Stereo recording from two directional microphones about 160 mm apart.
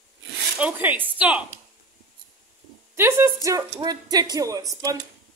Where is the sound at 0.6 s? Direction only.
10° right (ahead or behind).